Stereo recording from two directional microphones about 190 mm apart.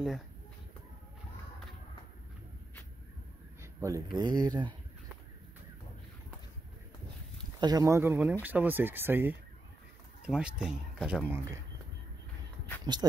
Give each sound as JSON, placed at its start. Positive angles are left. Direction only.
{"t": 3.6, "sound": "speech", "side_deg": -15}
{"t": 7.6, "sound": "speech", "side_deg": -20}
{"t": 12.9, "sound": "speech", "side_deg": -20}